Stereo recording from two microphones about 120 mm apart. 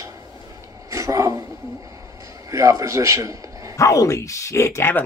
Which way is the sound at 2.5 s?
25° right (ahead or behind).